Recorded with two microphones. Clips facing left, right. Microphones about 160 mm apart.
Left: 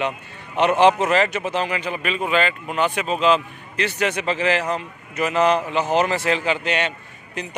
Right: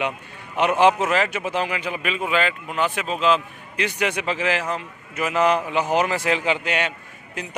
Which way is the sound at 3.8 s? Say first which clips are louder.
Left 1 dB; 10° right (ahead or behind).